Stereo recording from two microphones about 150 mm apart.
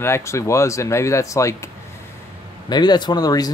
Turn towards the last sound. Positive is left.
turn(degrees=25)  # may be behind; listen again after turning